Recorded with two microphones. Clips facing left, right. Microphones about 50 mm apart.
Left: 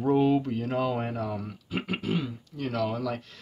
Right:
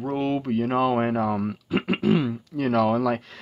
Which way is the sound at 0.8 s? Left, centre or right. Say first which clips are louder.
Right 7 dB; right.